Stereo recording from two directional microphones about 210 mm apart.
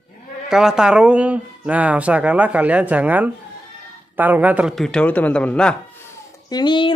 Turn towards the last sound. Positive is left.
turn(degrees=20)  # may be behind; listen again after turning